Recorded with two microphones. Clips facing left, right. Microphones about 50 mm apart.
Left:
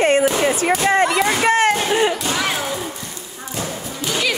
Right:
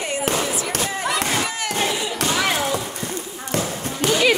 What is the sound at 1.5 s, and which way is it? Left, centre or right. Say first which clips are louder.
Crowd: left 12 dB; left.